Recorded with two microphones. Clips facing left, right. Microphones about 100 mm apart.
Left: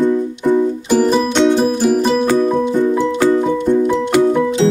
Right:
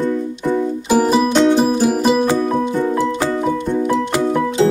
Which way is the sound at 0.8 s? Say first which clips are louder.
Right 3 dB; 5° right (ahead or behind).